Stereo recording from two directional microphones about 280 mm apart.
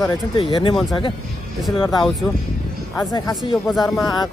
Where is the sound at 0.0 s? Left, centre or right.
Centre.